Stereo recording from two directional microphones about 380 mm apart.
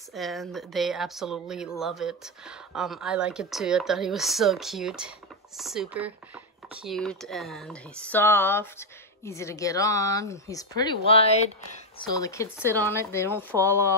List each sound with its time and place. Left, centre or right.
0.1 s speech: centre
12.5 s speech: centre
12.9 s speech: centre